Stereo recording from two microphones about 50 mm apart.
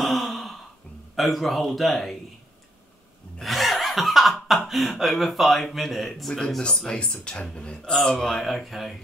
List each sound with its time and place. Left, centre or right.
0.0 s gasp: centre
1.1 s speech: centre
3.4 s snicker: centre
4.6 s speech: centre
6.9 s speech: centre